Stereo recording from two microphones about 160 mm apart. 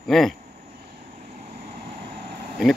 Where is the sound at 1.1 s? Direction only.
40° right (ahead or behind).